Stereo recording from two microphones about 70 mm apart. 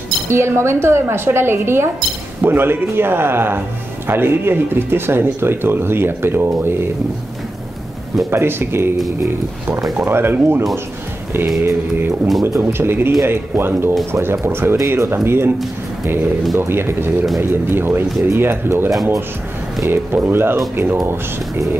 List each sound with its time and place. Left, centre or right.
0.3 s speech: right
8.3 s speech: right
10.0 s speech: right
11.4 s mantra: right
12.5 s speech: right
16.5 s speech: right
19.9 s speech: right